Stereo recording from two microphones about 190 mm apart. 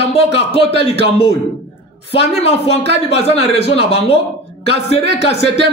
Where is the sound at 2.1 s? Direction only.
35° left (ahead or behind).